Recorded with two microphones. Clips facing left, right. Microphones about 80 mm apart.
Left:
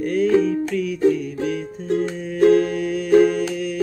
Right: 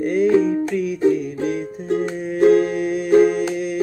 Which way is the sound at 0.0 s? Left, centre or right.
Centre.